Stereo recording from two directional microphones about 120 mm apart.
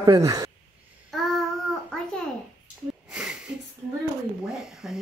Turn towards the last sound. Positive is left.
turn(degrees=-5)  # may be behind; listen again after turning